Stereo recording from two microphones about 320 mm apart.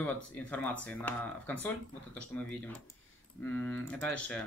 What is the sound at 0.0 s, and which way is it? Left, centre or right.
Speech, centre.